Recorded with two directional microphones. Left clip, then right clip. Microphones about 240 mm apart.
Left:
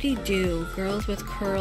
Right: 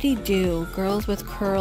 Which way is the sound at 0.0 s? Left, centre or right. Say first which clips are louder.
Right 3 dB; centre.